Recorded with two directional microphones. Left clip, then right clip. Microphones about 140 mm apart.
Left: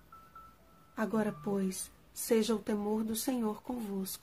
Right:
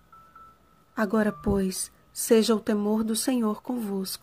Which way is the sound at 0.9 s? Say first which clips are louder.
Right 8 dB; 45° right (ahead or behind).